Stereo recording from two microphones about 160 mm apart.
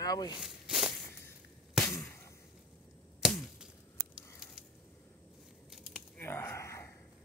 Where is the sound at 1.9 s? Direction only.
15° left (ahead or behind).